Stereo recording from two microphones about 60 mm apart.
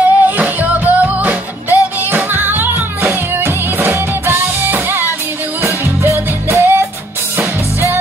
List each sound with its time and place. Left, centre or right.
0.0 s music: right
3.1 s music: right